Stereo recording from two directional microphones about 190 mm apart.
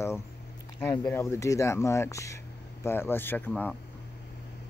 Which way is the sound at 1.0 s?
15° left (ahead or behind).